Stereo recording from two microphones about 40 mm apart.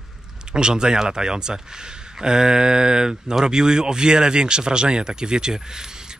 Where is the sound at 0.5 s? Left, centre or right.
Centre.